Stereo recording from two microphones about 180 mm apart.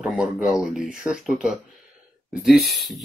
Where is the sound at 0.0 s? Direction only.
5° right (ahead or behind).